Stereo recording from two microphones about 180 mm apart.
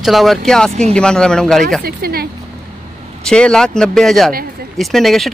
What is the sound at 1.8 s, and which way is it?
Speech, 60° right (ahead or behind).